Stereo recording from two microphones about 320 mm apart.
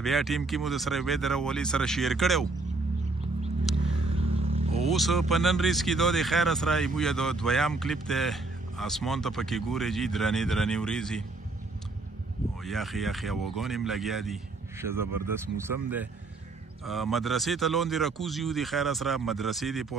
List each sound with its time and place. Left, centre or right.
0.0 s speech: centre
4.2 s a sound: centre
4.8 s speech: centre
12.6 s speech: centre
16.8 s speech: centre